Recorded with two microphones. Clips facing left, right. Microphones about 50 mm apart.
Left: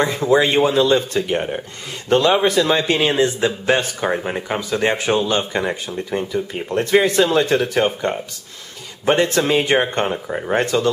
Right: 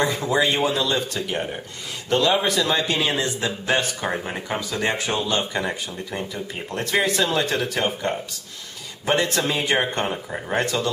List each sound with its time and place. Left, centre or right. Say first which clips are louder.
0.0 s speech: left 5 dB; left
3.8 s speech: left 5 dB; centre
6.7 s speech: left 9 dB; left
7.2 s speech: left 6 dB; centre
9.8 s speech: left 4 dB; centre